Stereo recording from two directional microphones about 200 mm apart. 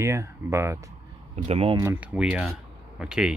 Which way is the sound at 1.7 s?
10° right (ahead or behind).